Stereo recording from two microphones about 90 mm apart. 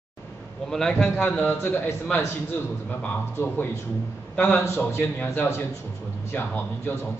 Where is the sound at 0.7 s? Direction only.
5° left (ahead or behind).